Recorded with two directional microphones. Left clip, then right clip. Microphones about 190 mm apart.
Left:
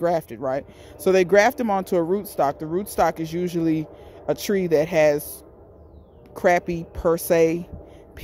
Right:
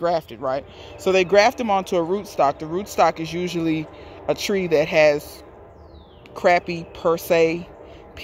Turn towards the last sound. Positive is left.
turn(degrees=25)  # may be behind; listen again after turning